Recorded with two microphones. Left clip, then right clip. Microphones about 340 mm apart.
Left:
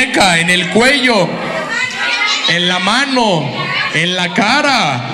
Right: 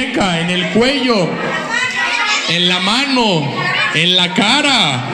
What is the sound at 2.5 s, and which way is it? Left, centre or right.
A man's voice, centre.